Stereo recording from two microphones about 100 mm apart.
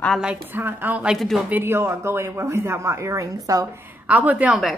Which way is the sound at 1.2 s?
Centre (ahead or behind).